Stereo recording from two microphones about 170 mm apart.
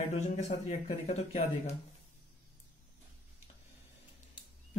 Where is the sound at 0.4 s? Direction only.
45° left (ahead or behind).